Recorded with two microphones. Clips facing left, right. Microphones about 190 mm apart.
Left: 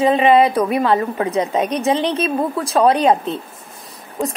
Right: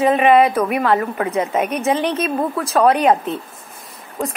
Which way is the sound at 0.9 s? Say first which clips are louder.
Left 1 dB; 20° left (ahead or behind).